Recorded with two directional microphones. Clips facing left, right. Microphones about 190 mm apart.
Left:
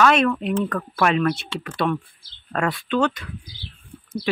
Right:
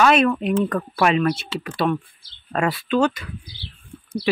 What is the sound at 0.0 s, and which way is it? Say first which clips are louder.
Speech: right 1 dB; 5° right (ahead or behind).